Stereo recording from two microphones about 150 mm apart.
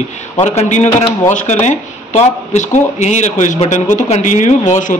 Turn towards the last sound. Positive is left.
turn(degrees=55)  # may be behind; listen again after turning